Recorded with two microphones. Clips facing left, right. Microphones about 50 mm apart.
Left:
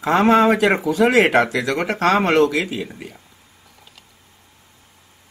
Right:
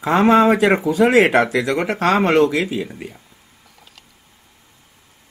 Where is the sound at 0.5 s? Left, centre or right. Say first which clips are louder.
Right 1 dB; right.